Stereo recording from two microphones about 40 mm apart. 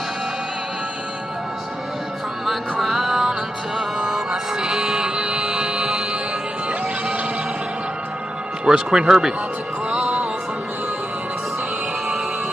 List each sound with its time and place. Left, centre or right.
2.4 s music: centre; by 5.5 s right
5.5 s music: centre
8.6 s speech: centre
9.0 s speech: centre